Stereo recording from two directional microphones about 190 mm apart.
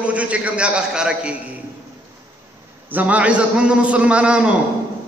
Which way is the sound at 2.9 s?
10° right (ahead or behind).